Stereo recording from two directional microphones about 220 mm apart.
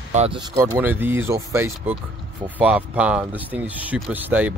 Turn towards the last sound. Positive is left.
turn(degrees=-5)  # may be behind; listen again after turning